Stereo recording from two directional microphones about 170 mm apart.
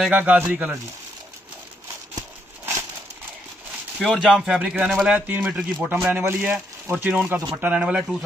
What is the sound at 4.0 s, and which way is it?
Speech, centre (ahead or behind).